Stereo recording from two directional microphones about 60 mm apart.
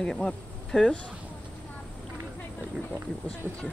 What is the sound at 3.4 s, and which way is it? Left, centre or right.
Speech, centre.